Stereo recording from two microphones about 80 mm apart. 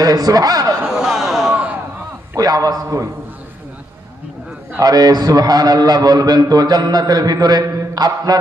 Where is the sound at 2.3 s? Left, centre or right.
Right.